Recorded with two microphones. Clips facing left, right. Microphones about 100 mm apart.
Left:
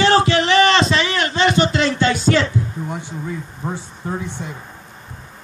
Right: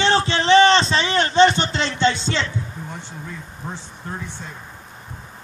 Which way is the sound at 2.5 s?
30° right (ahead or behind).